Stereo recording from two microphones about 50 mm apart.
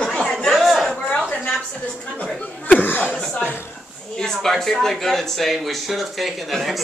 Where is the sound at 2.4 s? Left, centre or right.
Left.